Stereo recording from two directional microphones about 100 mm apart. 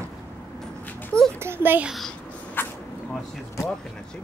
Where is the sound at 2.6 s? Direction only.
20° left (ahead or behind).